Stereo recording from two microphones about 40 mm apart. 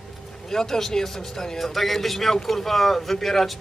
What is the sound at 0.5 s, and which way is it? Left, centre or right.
Speech, centre.